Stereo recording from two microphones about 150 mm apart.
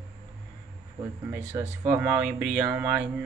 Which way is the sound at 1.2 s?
15° right (ahead or behind).